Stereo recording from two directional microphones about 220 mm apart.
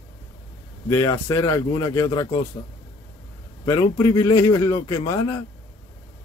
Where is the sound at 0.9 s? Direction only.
15° left (ahead or behind).